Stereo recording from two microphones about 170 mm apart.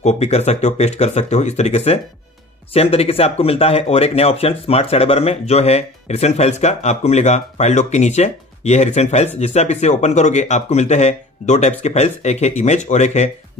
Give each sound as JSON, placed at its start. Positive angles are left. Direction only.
{"t": 0.0, "sound": "speech", "side_deg": 40}